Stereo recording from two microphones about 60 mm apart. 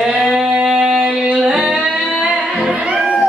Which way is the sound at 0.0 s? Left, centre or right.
Centre.